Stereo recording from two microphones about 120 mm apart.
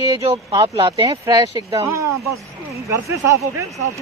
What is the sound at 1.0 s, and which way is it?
Speech, 30° right (ahead or behind).